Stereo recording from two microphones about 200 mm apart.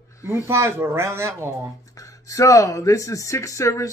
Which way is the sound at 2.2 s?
15° left (ahead or behind).